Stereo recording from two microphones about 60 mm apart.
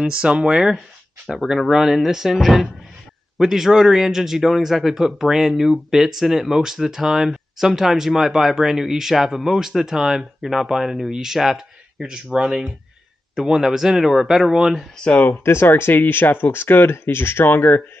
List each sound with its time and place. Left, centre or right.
0.0 s speech: centre
1.3 s speech: centre
15.0 s speech: left
15.4 s speech: left